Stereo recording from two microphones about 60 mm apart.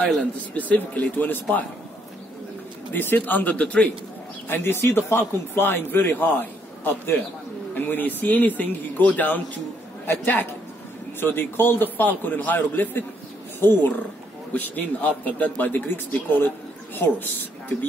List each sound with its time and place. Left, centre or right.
0.6 s a man's voice: left
2.9 s a man's voice: left
4.5 s a man's voice: left
14.5 s a man's voice: left